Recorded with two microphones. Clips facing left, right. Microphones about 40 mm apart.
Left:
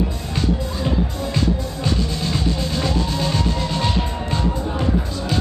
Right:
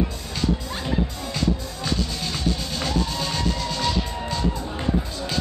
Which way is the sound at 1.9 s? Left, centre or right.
Left.